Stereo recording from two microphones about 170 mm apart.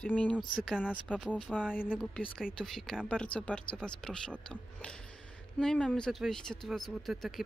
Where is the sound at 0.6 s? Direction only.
5° right (ahead or behind).